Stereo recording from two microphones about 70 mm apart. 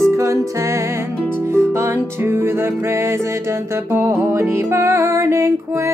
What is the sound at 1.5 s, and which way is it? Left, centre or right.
Music, right.